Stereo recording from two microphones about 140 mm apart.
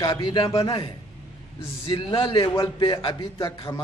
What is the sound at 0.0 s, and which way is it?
A man's voice, 35° left (ahead or behind).